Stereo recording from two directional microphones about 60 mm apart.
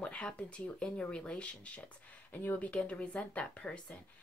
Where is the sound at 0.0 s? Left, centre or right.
Centre.